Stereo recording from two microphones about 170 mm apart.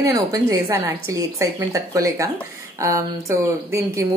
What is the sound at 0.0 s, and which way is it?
A woman's voice, 20° right (ahead or behind).